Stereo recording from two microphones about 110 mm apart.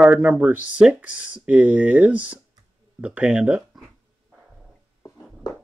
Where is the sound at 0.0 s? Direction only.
10° right (ahead or behind).